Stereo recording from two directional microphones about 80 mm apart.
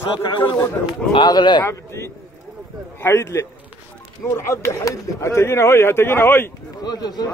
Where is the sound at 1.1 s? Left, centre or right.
Left.